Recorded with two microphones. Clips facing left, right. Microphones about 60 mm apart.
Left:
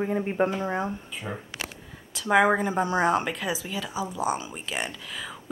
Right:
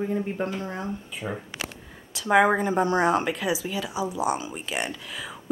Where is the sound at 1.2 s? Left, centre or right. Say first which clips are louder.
Right 3 dB; centre.